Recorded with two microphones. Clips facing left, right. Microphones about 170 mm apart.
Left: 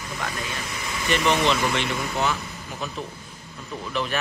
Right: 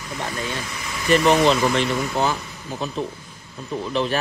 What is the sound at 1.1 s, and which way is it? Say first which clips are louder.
Speech: right 6 dB; 40° right (ahead or behind).